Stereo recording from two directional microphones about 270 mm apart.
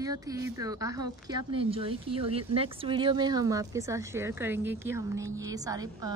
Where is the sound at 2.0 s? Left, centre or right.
Right.